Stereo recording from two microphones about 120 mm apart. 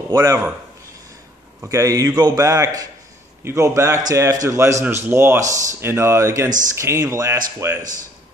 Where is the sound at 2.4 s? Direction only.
25° right (ahead or behind).